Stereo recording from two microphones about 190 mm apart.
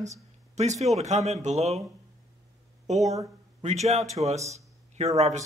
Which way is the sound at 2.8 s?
35° right (ahead or behind).